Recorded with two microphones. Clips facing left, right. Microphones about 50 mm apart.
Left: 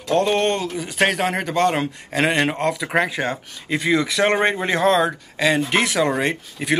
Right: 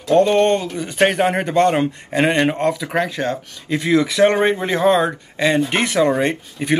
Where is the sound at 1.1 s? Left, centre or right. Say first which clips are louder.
Right 5 dB; centre.